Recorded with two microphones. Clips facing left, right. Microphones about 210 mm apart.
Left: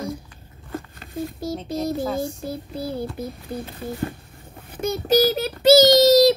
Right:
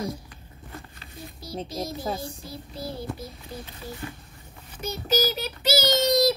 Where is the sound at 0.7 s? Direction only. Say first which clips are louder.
Left 10 dB; 45° left (ahead or behind).